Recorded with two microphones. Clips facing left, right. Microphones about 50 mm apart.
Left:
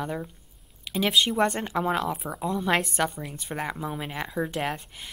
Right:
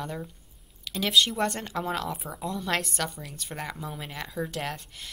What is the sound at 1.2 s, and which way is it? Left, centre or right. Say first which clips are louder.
A woman's voice: even; centre.